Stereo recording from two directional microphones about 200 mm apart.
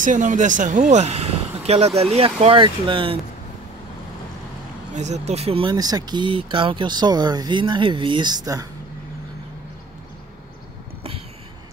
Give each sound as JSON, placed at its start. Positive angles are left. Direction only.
{"t": 0.0, "sound": "speech", "side_deg": -40}
{"t": 4.9, "sound": "speech", "side_deg": -35}